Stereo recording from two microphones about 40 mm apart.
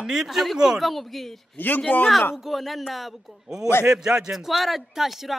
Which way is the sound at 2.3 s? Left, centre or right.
Centre.